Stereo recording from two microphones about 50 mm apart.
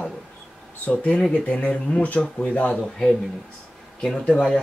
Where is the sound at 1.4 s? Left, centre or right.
Left.